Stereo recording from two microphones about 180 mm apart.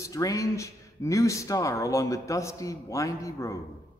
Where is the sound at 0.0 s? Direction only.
20° left (ahead or behind).